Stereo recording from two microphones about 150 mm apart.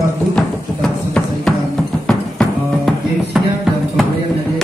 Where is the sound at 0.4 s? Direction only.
5° left (ahead or behind).